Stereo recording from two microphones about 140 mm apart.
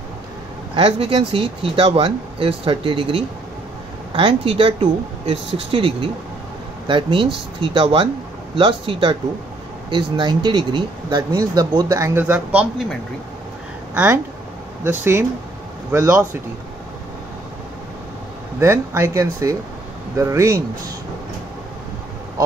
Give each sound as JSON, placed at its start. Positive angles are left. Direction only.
{"t": 0.7, "sound": "speech", "side_deg": -40}
{"t": 13.9, "sound": "speech", "side_deg": -20}
{"t": 18.6, "sound": "speech", "side_deg": -20}